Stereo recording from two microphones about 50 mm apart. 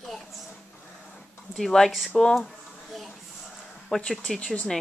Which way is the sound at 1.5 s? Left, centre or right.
Centre.